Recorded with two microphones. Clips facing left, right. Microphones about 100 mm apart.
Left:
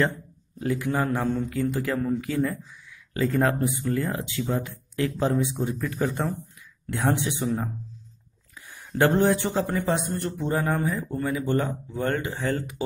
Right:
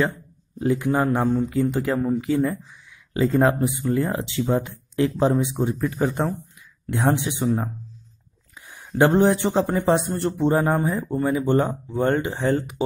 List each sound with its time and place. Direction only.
0.6 s speech: 25° right (ahead or behind)
8.5 s speech: 20° right (ahead or behind)